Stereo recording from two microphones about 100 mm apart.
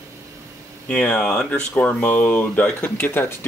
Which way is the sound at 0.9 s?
10° left (ahead or behind).